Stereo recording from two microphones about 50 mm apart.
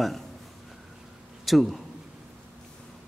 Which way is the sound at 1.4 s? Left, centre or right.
Centre.